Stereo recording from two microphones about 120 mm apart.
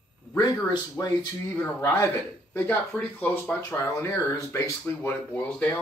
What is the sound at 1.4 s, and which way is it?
Speech, 20° left (ahead or behind).